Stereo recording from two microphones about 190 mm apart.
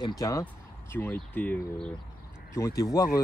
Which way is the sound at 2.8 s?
20° left (ahead or behind).